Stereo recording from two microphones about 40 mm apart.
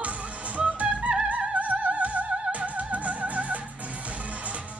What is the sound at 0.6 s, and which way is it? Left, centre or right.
Music, right.